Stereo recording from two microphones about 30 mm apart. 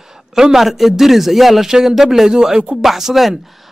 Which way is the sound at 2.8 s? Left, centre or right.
Centre.